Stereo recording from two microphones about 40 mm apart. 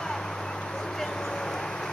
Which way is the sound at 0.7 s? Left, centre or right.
Centre.